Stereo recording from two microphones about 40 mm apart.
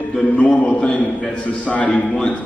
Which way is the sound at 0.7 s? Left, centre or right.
Left.